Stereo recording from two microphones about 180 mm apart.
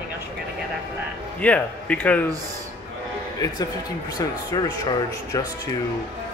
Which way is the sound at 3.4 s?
20° left (ahead or behind).